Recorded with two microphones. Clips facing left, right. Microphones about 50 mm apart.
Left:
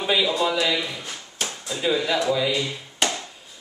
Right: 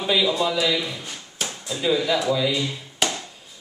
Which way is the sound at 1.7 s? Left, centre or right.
Centre.